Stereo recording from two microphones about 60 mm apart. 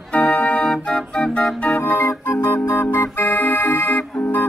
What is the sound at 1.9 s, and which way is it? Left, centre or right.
Music, left.